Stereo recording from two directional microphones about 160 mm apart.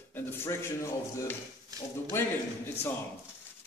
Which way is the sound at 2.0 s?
15° left (ahead or behind).